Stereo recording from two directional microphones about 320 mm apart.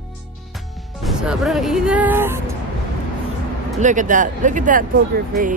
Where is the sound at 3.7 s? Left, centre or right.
Right.